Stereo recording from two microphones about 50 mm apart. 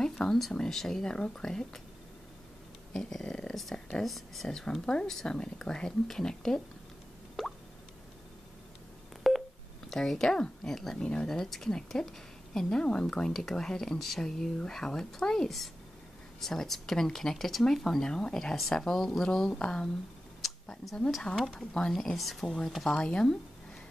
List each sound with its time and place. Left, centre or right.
0.0 s speech: centre
2.9 s speech: centre
4.0 s speech: centre
7.4 s a sound: centre
9.3 s telephone dialing: centre
9.8 s speech: centre
12.6 s speech: centre
21.4 s speech: centre
22.9 s speech: centre